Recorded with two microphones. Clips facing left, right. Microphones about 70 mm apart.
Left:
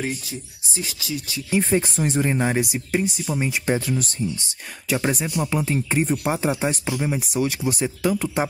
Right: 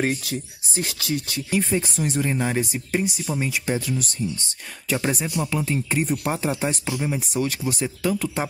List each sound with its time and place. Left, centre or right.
0.7 s speech: right
1.5 s speech: left; by 3.0 s centre
3.0 s speech: centre
3.3 s speech: left
3.6 s speech: left
4.8 s speech: centre
5.5 s speech: centre
6.2 s speech: centre